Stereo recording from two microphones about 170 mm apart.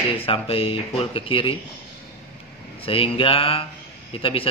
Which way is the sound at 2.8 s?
35° left (ahead or behind).